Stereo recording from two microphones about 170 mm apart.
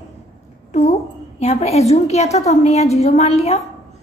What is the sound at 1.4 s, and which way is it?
A woman's voice, 40° left (ahead or behind).